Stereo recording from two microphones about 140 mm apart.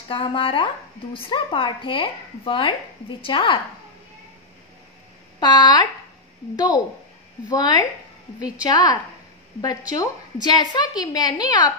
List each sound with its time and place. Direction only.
0.1 s speech: 40° left (ahead or behind)
5.4 s speech: 30° left (ahead or behind)
7.4 s a woman's voice: 30° left (ahead or behind)